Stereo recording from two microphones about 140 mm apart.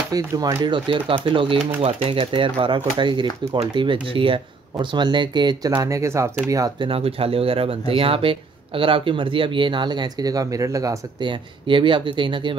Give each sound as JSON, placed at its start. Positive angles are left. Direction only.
{"t": 0.1, "sound": "speech", "side_deg": -25}
{"t": 5.7, "sound": "speech", "side_deg": -20}
{"t": 6.9, "sound": "speech", "side_deg": -45}